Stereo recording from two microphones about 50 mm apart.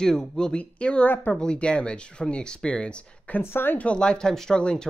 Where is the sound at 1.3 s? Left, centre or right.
Centre.